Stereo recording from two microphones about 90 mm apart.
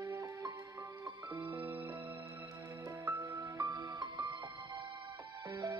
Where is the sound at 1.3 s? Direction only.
60° right (ahead or behind).